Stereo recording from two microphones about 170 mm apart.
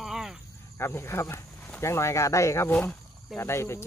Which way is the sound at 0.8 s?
15° left (ahead or behind).